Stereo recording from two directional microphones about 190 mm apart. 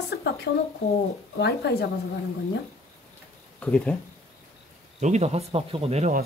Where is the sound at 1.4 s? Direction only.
60° left (ahead or behind).